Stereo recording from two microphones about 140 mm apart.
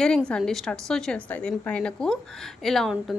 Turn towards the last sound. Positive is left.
turn(degrees=0)  # may be behind; listen again after turning